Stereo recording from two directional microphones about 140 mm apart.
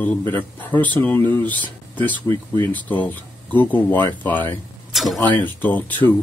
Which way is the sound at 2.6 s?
10° left (ahead or behind).